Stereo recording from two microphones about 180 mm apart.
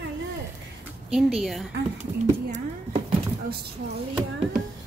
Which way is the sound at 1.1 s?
Centre (ahead or behind).